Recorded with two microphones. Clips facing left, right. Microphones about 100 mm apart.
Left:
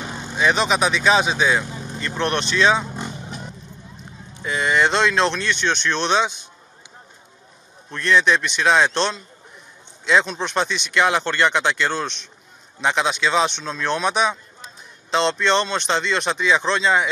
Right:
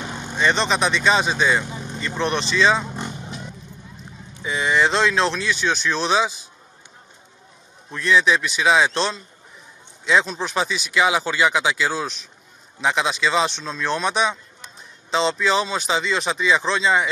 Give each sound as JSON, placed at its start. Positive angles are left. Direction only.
{"t": 0.4, "sound": "speech", "side_deg": 5}
{"t": 3.3, "sound": "vehicle", "side_deg": 40}
{"t": 3.9, "sound": "speech", "side_deg": 0}
{"t": 7.9, "sound": "speech", "side_deg": 0}